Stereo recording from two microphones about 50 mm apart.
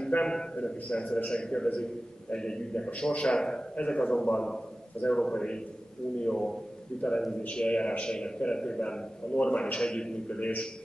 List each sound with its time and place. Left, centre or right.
0.1 s a man's voice: left